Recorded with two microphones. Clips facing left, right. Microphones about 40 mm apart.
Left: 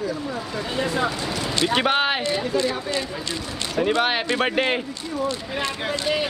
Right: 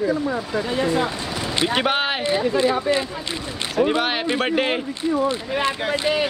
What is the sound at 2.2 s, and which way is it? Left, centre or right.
Speech, right.